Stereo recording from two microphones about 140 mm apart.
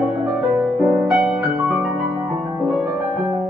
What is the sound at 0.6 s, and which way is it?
Music, 10° right (ahead or behind).